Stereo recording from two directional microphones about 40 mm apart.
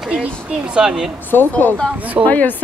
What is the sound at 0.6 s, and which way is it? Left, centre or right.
Speech, right.